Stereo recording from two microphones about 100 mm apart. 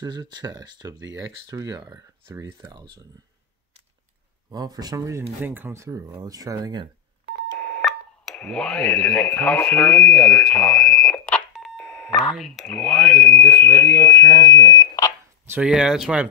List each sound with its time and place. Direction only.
0.0 s speech: 40° right (ahead or behind)
4.5 s speech: 40° right (ahead or behind)
5.4 s speech: 20° right (ahead or behind); by 6.9 s 45° right (ahead or behind)
7.5 s telephone dialing: 10° left (ahead or behind)
7.8 s speech: 5° left (ahead or behind)
11.5 s telephone dialing: centre (ahead or behind)
12.4 s speech: 5° left (ahead or behind)
13.4 s speech: 20° left (ahead or behind)
15.6 s speech: 5° right (ahead or behind)